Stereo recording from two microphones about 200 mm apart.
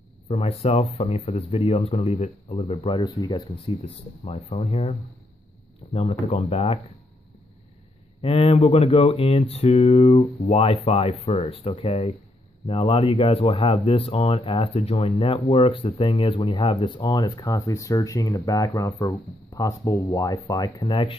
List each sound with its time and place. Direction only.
0.3 s speech: 30° left (ahead or behind)
5.9 s speech: 30° left (ahead or behind)
8.2 s speech: 30° left (ahead or behind)